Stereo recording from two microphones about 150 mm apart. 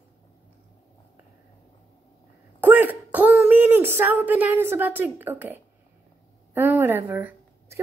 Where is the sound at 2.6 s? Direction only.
10° right (ahead or behind).